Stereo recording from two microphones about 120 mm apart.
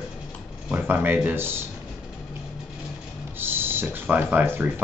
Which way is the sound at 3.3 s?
20° right (ahead or behind).